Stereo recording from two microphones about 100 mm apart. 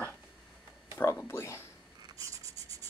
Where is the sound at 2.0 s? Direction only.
35° right (ahead or behind).